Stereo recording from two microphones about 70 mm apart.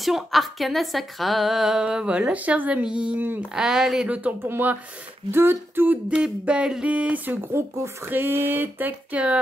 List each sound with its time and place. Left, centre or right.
0.0 s speech: centre
3.2 s speech: right
3.5 s speech: centre
4.1 s speech: right
4.4 s speech: right
6.0 s speech: centre
7.5 s speech: right; by 9.4 s centre